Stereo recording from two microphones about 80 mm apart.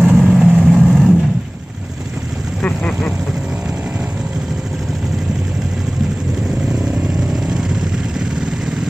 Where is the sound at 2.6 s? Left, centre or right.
Centre.